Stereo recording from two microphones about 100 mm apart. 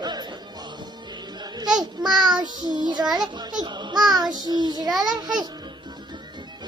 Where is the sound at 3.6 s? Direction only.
45° right (ahead or behind).